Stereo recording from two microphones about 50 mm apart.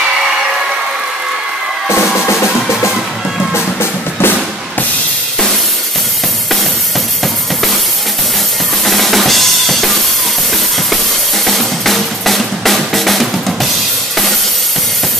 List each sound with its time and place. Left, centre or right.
1.9 s drum: left
3.5 s music: left
8.8 s drum kit: centre
11.4 s music: centre